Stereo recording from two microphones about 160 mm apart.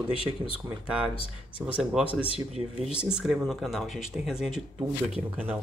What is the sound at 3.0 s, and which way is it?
Speech, 5° right (ahead or behind).